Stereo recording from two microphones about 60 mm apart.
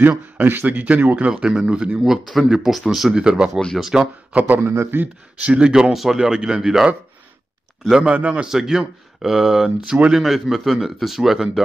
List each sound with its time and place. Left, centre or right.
0.4 s speech: right
1.3 s speech: centre
3.7 s speech: centre
4.3 s speech: right
4.6 s a man's voice: right
5.0 s speech: right
7.9 s speech: centre